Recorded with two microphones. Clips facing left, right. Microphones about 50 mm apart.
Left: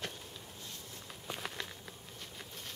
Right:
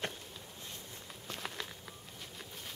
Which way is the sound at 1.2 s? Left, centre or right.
Centre.